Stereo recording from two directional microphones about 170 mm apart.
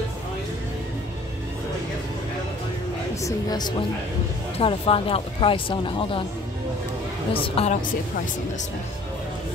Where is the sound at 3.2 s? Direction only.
25° left (ahead or behind).